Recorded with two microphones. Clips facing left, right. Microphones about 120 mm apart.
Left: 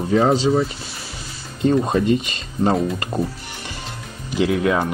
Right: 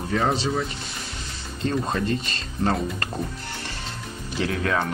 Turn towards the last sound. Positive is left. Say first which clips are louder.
# left 6 dB
turn(degrees=15)  # may be behind; listen again after turning